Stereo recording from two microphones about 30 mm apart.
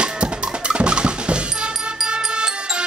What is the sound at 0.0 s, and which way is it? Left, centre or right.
Drum, right.